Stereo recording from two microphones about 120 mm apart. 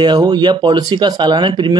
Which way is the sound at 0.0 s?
40° right (ahead or behind).